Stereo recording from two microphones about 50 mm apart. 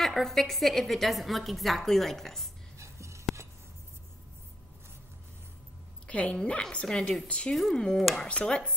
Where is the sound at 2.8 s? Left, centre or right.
Right.